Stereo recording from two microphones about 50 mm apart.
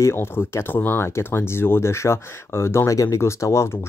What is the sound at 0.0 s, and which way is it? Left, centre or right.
Speech, left.